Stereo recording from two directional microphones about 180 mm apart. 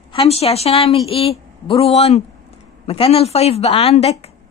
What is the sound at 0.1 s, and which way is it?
A woman's voice, 35° left (ahead or behind).